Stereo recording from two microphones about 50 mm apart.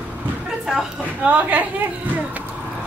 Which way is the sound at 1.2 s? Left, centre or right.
Right.